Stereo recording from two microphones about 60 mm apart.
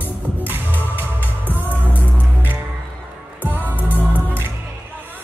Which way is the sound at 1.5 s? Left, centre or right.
Left.